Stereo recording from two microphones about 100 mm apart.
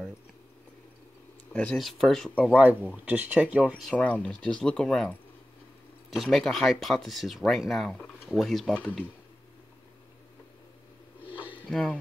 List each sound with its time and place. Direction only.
1.5 s speech: 15° left (ahead or behind)
1.8 s speech: centre (ahead or behind)
2.5 s speech: 15° right (ahead or behind)
3.9 s speech: 15° left (ahead or behind)
8.7 s speech: 15° left (ahead or behind)
11.7 s speech: 5° left (ahead or behind)